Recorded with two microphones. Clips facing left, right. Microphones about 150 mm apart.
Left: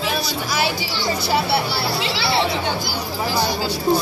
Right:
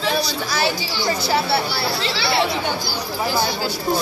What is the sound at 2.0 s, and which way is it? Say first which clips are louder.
Speech: even; 15° left (ahead or behind).